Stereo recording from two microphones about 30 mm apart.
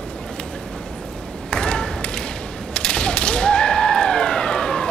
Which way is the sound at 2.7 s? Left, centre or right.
Left.